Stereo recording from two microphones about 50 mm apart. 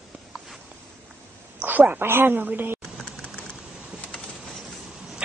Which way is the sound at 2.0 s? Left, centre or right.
Right.